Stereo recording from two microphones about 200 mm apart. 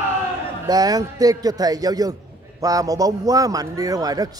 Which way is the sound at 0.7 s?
20° right (ahead or behind).